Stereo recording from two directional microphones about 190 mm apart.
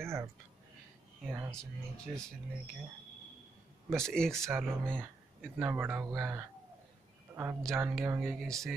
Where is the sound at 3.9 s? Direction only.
5° left (ahead or behind).